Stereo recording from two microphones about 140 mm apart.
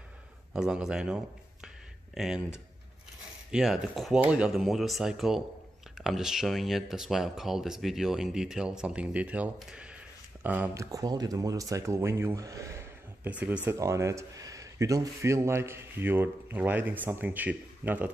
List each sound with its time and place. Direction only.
0.5 s speech: 5° right (ahead or behind)
3.5 s speech: 5° right (ahead or behind)
10.7 s speech: 25° right (ahead or behind)
13.7 s speech: 20° right (ahead or behind)